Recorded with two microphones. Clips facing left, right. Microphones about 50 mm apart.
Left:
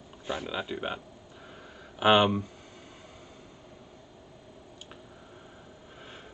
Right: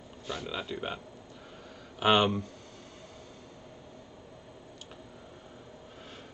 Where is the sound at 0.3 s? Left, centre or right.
Centre.